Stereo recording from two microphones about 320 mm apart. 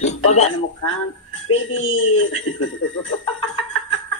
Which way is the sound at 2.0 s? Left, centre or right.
Left.